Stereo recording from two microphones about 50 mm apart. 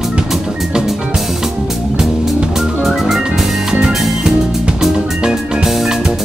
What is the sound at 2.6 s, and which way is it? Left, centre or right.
Music, centre.